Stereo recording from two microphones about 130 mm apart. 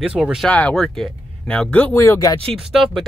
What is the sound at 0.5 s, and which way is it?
Speech, 5° left (ahead or behind).